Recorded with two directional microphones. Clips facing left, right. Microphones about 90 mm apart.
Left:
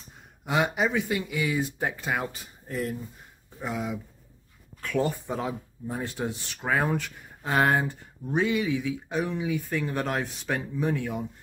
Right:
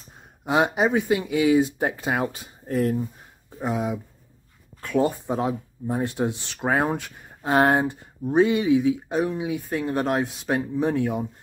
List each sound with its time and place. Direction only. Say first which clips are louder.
0.5 s speech: right 5 dB; 25° right (ahead or behind)
1.2 s speech: right 9 dB; 50° right (ahead or behind)
1.8 s speech: right 4 dB; 35° right (ahead or behind)
2.6 s speech: right 8 dB; 50° right (ahead or behind)
3.5 s speech: right 5 dB; 25° right (ahead or behind)
6.6 s speech: right 3 dB; 30° right (ahead or behind)
10.0 s speech: right 5 dB; 20° right (ahead or behind)